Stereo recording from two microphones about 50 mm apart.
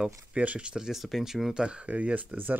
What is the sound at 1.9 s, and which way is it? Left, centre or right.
Speech, right.